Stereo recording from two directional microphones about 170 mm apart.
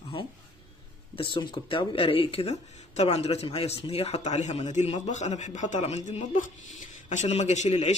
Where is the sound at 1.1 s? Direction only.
30° left (ahead or behind).